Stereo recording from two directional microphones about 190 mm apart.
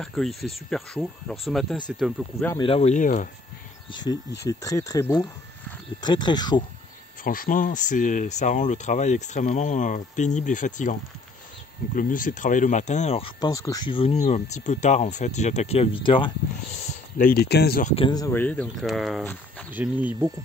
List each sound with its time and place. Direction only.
0.0 s speech: centre (ahead or behind)
2.6 s speech: 30° left (ahead or behind)
3.9 s speech: 20° left (ahead or behind)
7.2 s speech: 45° left (ahead or behind)
13.4 s speech: 15° left (ahead or behind)
13.9 s speech: 35° left (ahead or behind)
16.7 s a sound: 35° left (ahead or behind)
17.3 s speech: 60° left (ahead or behind)
17.8 s speech: 30° left (ahead or behind); by 20.2 s 10° right (ahead or behind)